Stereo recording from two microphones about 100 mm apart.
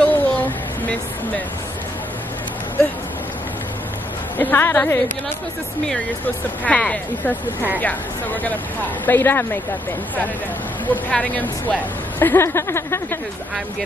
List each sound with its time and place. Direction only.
0.0 s a sound: 15° left (ahead or behind)
4.4 s speech: 20° left (ahead or behind)
6.2 s speech: 15° left (ahead or behind)
10.9 s speech: 15° left (ahead or behind)